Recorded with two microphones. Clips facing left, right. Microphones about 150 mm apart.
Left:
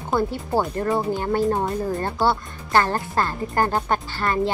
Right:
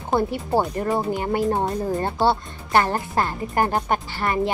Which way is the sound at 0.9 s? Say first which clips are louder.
Left 1 dB; 5° right (ahead or behind).